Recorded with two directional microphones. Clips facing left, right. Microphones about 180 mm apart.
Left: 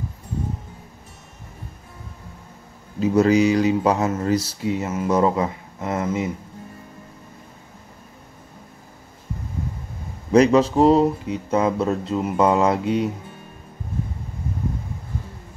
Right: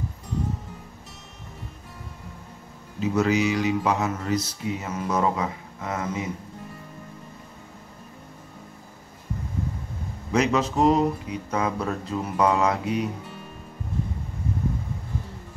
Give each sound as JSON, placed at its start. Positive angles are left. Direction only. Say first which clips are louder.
{"t": 3.0, "sound": "speech", "louder": "left 6 dB", "side_deg": 35}
{"t": 10.3, "sound": "speech", "louder": "left 7 dB", "side_deg": 35}